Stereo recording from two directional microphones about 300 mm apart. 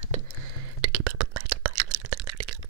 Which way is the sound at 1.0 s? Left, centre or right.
Right.